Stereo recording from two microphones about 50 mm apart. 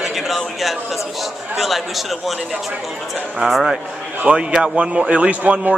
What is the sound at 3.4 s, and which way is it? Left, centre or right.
Speech, centre.